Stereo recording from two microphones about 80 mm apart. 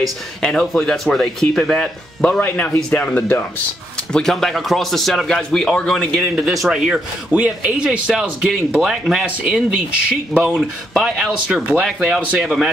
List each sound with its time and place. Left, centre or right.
0.4 s speech: centre
2.2 s speech: centre
4.1 s speech: centre
6.2 s speech: centre
12.2 s a man's voice: centre